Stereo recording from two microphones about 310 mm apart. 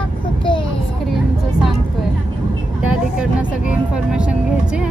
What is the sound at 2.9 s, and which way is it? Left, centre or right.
Speech, centre.